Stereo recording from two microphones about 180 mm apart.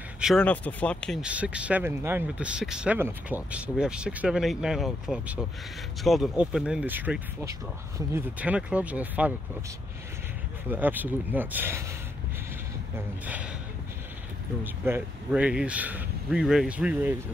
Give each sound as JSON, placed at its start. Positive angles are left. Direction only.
{"t": 0.2, "sound": "speech", "side_deg": 0}
{"t": 1.2, "sound": "speech", "side_deg": -5}
{"t": 10.7, "sound": "speech", "side_deg": -10}
{"t": 12.9, "sound": "speech", "side_deg": -10}
{"t": 14.6, "sound": "speech", "side_deg": -10}